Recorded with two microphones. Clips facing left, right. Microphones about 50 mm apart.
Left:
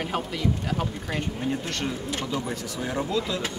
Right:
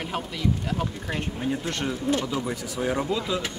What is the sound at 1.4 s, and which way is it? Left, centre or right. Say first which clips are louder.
Speech: right 1 dB; centre.